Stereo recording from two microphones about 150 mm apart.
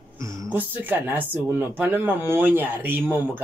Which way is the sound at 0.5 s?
10° right (ahead or behind).